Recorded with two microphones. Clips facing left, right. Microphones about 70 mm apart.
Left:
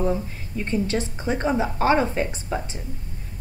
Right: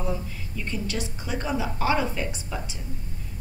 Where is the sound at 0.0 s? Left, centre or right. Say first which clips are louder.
Left 6 dB; left.